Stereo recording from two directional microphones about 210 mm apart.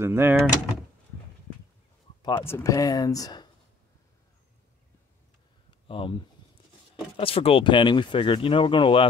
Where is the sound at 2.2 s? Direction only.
15° left (ahead or behind).